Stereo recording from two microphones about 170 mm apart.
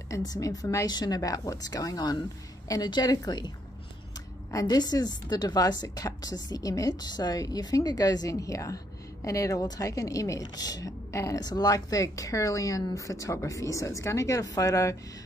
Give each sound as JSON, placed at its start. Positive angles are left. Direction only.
{"t": 0.1, "sound": "a woman's voice", "side_deg": 20}